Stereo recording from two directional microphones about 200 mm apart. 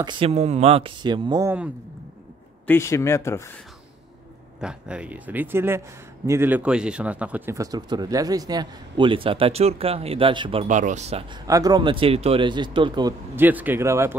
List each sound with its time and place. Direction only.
0.0 s speech: 30° right (ahead or behind)
2.6 s speech: 10° left (ahead or behind)
4.6 s speech: 5° right (ahead or behind); by 11.2 s 35° right (ahead or behind)
11.4 s speech: 20° right (ahead or behind)
13.4 s speech: 10° right (ahead or behind)